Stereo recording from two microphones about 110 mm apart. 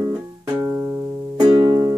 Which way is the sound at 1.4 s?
40° right (ahead or behind).